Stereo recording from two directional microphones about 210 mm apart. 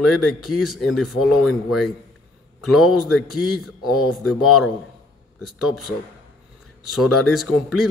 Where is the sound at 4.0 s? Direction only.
90° left.